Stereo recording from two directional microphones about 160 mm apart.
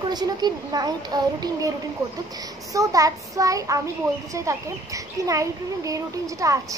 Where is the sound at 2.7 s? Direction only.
20° right (ahead or behind).